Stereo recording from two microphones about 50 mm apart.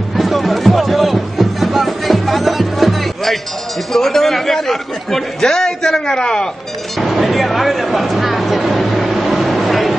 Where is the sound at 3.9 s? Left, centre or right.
Centre.